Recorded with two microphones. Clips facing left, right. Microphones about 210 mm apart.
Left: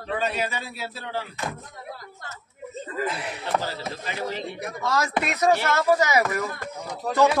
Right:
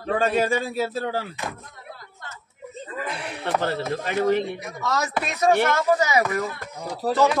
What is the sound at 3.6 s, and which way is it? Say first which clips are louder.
Speech: right 6 dB; 60° right (ahead or behind).